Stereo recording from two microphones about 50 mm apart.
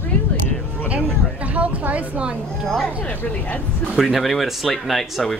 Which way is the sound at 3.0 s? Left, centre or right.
Left.